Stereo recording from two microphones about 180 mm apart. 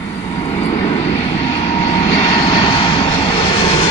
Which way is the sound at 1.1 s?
30° left (ahead or behind).